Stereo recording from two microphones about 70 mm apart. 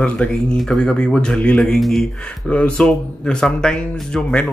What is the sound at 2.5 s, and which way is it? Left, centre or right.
Speech, centre.